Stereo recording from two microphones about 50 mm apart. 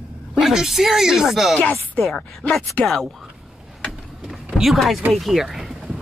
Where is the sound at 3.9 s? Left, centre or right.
Centre.